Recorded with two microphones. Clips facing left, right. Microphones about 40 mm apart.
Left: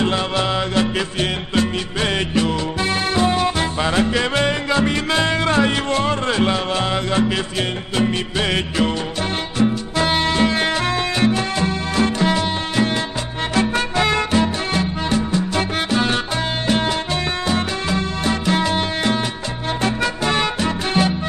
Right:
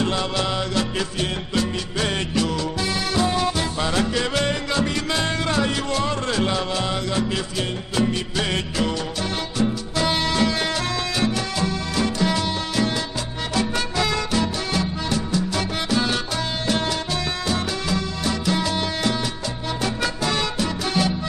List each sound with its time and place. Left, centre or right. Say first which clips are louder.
0.0 s music: left 3 dB; left